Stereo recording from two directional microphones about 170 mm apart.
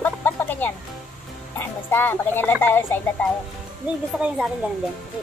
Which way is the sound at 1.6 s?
10° left (ahead or behind).